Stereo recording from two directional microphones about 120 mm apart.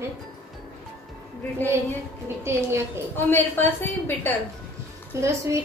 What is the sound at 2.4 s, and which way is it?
Speech, 20° right (ahead or behind).